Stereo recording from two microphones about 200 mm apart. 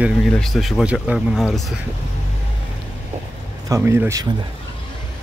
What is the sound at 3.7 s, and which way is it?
Speech, 15° right (ahead or behind).